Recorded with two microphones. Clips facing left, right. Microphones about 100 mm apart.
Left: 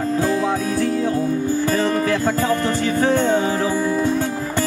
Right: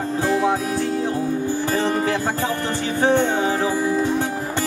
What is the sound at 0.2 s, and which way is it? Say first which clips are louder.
Music: right 3 dB; 20° right (ahead or behind).